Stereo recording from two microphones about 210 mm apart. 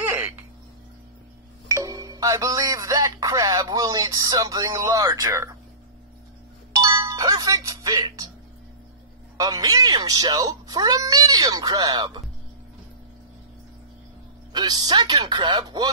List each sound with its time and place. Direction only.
0.0 s a sound: 10° right (ahead or behind)
1.7 s speech: 15° right (ahead or behind)
6.7 s music: 15° right (ahead or behind)
9.4 s speech: 15° right (ahead or behind)
14.5 s speech: 20° right (ahead or behind)